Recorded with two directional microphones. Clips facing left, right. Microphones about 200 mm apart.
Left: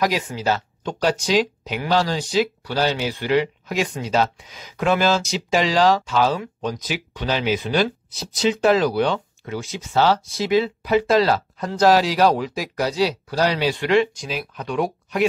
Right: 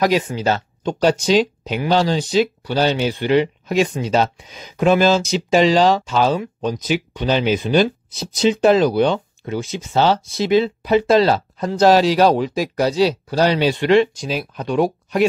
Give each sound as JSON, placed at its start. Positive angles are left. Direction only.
{"t": 0.0, "sound": "speech", "side_deg": -25}